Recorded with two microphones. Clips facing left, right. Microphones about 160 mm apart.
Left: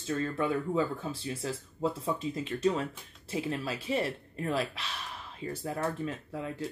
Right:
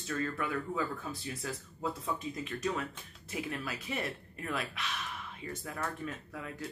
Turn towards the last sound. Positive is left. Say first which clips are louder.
# left 6 dB
turn(degrees=30)  # may be behind; listen again after turning